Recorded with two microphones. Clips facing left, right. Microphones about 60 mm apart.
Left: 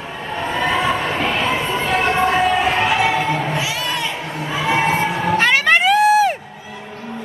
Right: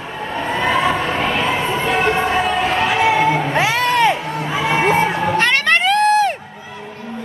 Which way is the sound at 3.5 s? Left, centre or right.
Right.